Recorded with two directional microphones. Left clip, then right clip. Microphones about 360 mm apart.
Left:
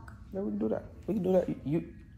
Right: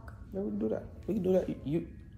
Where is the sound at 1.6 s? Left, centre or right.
Left.